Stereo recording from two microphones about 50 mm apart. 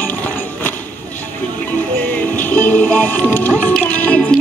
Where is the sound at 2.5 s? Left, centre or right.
Left.